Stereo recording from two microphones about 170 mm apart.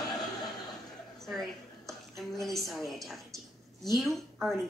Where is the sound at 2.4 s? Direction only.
Centre (ahead or behind).